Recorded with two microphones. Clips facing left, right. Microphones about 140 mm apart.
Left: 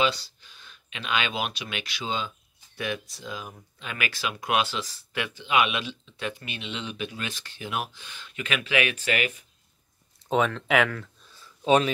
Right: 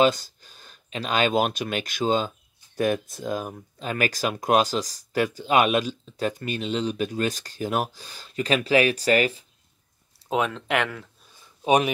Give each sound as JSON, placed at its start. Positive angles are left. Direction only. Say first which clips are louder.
{"t": 0.0, "sound": "speech", "louder": "right 6 dB", "side_deg": -45}
{"t": 10.1, "sound": "speech", "louder": "left 1 dB", "side_deg": 0}
{"t": 11.6, "sound": "speech", "louder": "right 1 dB", "side_deg": -15}